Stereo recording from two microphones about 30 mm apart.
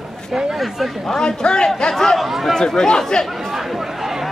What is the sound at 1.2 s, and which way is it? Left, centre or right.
Speech, left.